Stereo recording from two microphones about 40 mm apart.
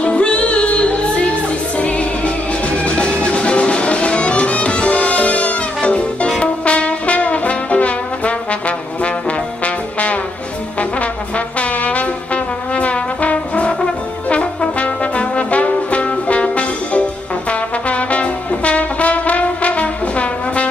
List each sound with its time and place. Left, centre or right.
0.0 s music: left
6.4 s brass instrument: left
9.9 s music: left
10.8 s trombone: left
14.3 s brass instrument: left